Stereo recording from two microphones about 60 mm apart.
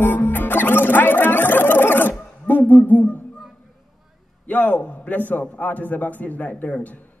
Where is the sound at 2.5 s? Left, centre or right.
Right.